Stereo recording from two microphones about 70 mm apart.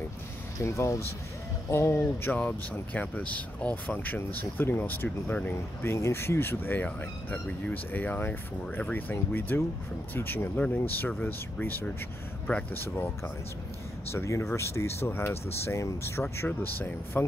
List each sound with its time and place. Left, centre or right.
0.6 s speech: left
2.3 s speech: left
12.7 s speech: left
14.1 s speech: left
16.4 s speech: left